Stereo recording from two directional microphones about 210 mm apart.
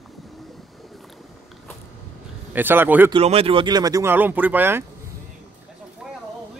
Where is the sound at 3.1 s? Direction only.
25° right (ahead or behind); by 4.9 s 10° right (ahead or behind).